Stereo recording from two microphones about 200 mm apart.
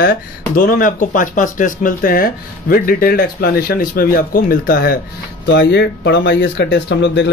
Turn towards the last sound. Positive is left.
turn(degrees=60)  # may be behind; listen again after turning